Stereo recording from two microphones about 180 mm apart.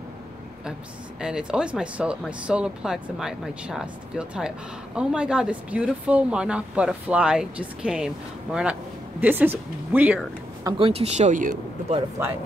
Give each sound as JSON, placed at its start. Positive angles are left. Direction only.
{"t": 1.2, "sound": "speech", "side_deg": -5}
{"t": 10.8, "sound": "speech", "side_deg": -35}